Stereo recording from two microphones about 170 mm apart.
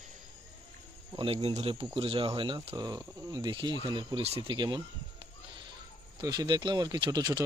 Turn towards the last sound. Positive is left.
turn(degrees=-25)  # may be behind; listen again after turning